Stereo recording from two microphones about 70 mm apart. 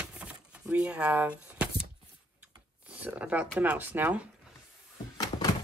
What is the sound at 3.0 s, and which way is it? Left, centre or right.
Speech, centre.